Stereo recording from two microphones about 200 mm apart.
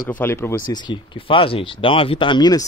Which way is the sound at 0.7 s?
25° left (ahead or behind).